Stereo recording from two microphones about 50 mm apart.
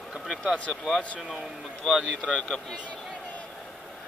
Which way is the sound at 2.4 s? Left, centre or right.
Centre.